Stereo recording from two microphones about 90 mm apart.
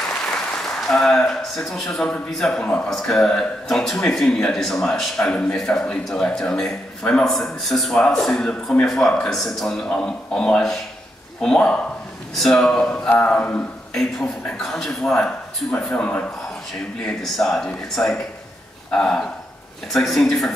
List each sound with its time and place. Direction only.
0.2 s a sound: 5° left (ahead or behind)
2.3 s a man's voice: 5° left (ahead or behind)
17.2 s a man's voice: 5° left (ahead or behind)